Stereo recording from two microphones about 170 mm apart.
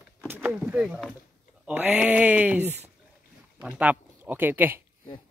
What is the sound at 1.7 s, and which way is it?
Speech, 10° right (ahead or behind).